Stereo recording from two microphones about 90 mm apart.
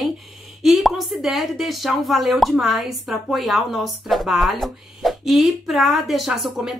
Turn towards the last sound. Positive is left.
turn(degrees=-5)  # may be behind; listen again after turning